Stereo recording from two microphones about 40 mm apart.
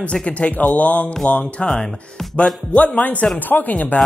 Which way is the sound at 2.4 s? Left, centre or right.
Left.